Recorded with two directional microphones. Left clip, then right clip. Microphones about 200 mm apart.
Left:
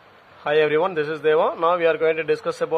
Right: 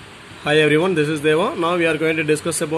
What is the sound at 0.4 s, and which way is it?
Speech, 40° left (ahead or behind).